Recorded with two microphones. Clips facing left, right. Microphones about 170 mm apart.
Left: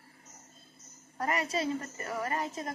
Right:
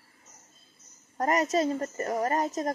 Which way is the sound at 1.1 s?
40° right (ahead or behind).